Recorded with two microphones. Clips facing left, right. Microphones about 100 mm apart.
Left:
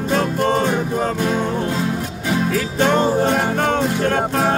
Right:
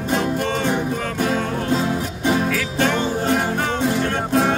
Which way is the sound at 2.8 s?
35° left (ahead or behind).